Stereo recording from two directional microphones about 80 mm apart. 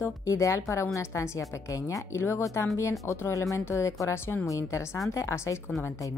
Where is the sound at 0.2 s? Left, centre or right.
Left.